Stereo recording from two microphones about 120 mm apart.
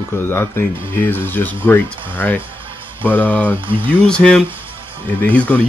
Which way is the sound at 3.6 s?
45° right (ahead or behind).